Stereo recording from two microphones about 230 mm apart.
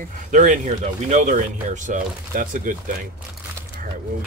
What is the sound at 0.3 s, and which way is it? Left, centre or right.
Speech, right.